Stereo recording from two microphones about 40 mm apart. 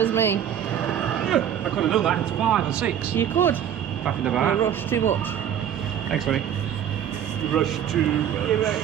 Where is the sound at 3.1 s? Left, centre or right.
Left.